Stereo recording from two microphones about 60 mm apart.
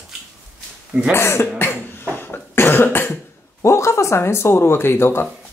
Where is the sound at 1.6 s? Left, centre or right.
Left.